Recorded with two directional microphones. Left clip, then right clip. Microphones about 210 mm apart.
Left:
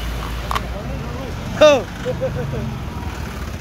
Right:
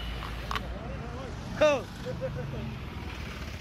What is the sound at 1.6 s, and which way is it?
Speech, 25° left (ahead or behind).